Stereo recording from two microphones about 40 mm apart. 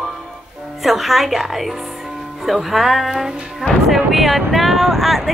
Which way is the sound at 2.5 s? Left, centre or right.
Centre.